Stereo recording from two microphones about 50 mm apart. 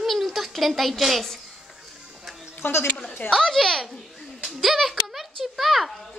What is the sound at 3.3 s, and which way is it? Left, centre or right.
A woman's voice, centre.